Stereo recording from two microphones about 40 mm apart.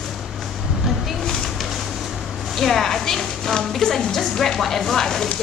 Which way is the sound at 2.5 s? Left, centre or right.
Centre.